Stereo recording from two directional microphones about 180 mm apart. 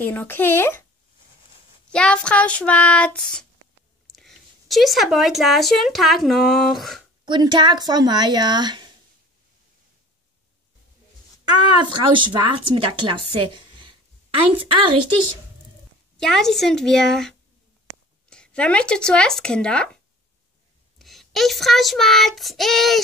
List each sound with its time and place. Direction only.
0.0 s a sound: 10° left (ahead or behind)
1.9 s a sound: 5° left (ahead or behind)
4.1 s speech: centre (ahead or behind)
7.2 s speech: 25° right (ahead or behind)
11.4 s a woman's voice: 25° right (ahead or behind)
16.2 s child singing: 5° left (ahead or behind)
18.3 s speech: 5° left (ahead or behind)
21.0 s child singing: centre (ahead or behind)